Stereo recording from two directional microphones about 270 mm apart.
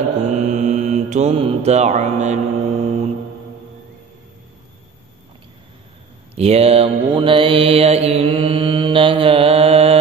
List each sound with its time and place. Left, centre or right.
0.3 s mantra: right
6.3 s mantra: right